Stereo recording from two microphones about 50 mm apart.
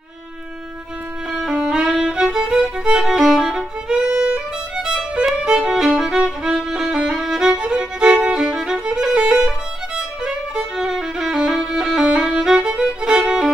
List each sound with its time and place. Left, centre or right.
1.3 s violin: centre
3.0 s violin: centre
7.6 s music: centre
8.7 s violin: centre
11.5 s music: centre
12.0 s violin: centre